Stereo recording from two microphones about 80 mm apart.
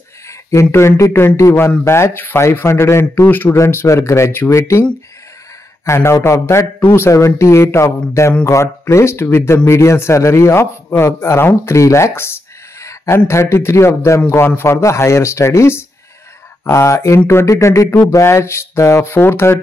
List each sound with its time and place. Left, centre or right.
0.3 s speech: left
3.3 s speech: left
3.5 s speech: left
5.9 s speech: left
12.8 s a sound: left
13.3 s speech: left